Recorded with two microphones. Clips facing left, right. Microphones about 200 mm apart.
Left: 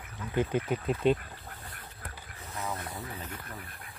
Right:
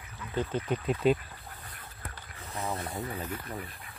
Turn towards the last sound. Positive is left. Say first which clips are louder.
# right 5 dB
turn(degrees=0)  # may be behind; listen again after turning